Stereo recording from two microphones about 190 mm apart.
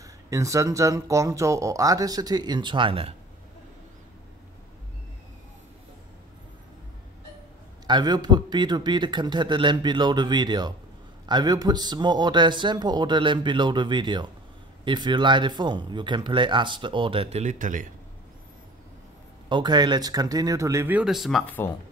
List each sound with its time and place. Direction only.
0.0 s speech: 15° right (ahead or behind)
7.8 s speech: 20° right (ahead or behind); by 17.8 s 45° right (ahead or behind)
19.5 s speech: 20° right (ahead or behind); by 21.7 s 10° left (ahead or behind)